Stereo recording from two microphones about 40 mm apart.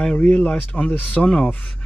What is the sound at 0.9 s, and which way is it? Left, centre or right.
Speech, left.